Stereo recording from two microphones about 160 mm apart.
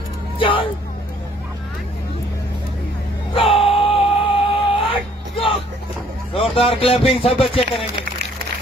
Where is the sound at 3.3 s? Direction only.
35° left (ahead or behind).